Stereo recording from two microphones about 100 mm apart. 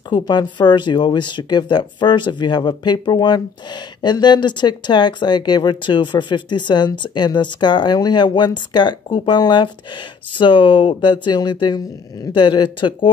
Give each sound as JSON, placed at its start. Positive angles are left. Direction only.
{"t": 0.3, "sound": "speech", "side_deg": 50}